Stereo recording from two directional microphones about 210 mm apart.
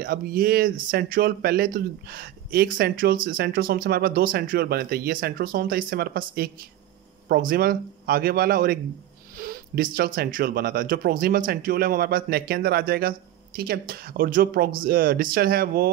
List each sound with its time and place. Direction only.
0.0 s speech: 45° right (ahead or behind)
9.4 s a sound: 45° right (ahead or behind)
9.9 s speech: 45° right (ahead or behind)